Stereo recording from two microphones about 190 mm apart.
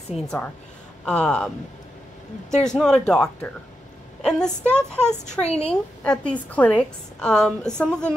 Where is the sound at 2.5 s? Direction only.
5° left (ahead or behind).